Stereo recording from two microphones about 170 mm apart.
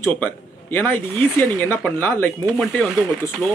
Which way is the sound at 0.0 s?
10° left (ahead or behind).